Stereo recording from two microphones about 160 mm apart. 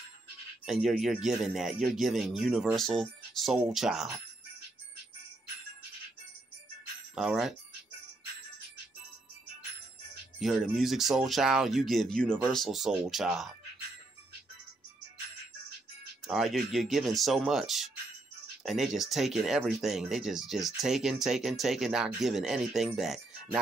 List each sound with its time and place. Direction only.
0.7 s speech: centre (ahead or behind)
7.2 s speech: 5° right (ahead or behind)
10.4 s speech: centre (ahead or behind)
16.3 s speech: centre (ahead or behind)